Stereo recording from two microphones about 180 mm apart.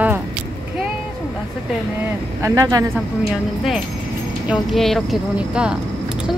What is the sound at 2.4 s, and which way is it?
Speech, 15° right (ahead or behind).